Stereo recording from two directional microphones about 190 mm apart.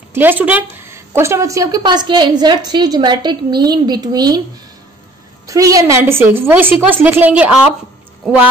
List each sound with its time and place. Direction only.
0.1 s a woman's voice: 10° right (ahead or behind)
5.5 s a woman's voice: 15° right (ahead or behind)